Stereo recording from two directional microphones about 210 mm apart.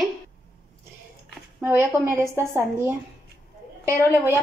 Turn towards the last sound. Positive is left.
turn(degrees=-15)  # may be behind; listen again after turning